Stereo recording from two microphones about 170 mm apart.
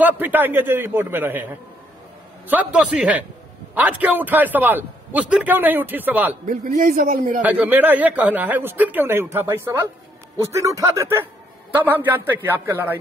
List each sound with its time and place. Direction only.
0.0 s a man's voice: 10° right (ahead or behind)
6.4 s a man's voice: 50° right (ahead or behind)
7.4 s a man's voice: 10° right (ahead or behind)